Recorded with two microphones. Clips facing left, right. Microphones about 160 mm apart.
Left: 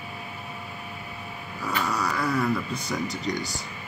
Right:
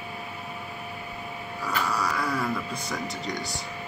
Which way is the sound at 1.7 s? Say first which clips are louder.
Left 1 dB; centre (ahead or behind).